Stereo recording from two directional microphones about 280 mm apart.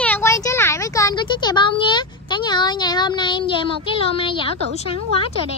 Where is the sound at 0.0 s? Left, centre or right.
Centre.